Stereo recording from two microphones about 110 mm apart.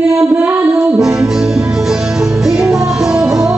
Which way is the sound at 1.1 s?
5° right (ahead or behind).